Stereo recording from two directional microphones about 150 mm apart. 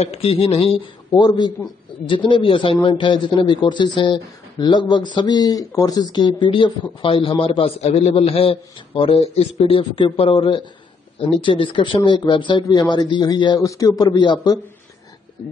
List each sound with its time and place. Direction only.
0.0 s speech: 40° left (ahead or behind)